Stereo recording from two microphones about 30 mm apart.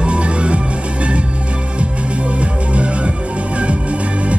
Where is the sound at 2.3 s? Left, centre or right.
Right.